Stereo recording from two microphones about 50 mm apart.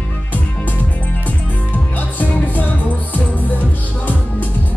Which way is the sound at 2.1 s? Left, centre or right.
Left.